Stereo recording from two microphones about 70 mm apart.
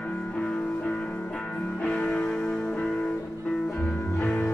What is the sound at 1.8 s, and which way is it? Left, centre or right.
Music, centre.